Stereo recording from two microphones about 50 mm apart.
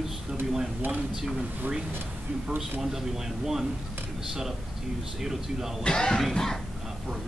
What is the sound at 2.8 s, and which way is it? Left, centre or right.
Speech, centre.